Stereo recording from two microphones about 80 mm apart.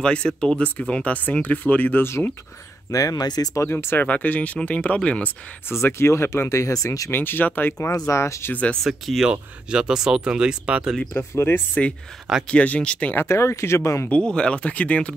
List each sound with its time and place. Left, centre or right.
0.0 s speech: centre
2.9 s speech: left
3.5 s speech: left; by 5.3 s centre
5.7 s speech: left
7.1 s speech: left
8.1 s speech: left
8.8 s speech: centre
9.3 s speech: centre
11.1 s speech: left
12.4 s speech: centre
13.1 s speech: left
14.0 s speech: centre